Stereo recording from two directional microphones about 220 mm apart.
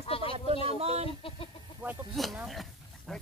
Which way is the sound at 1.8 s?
Centre (ahead or behind).